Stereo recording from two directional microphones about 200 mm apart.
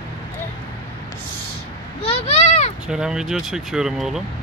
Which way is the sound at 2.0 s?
35° left (ahead or behind).